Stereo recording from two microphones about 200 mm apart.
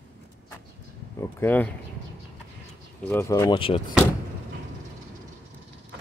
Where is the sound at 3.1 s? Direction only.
15° left (ahead or behind).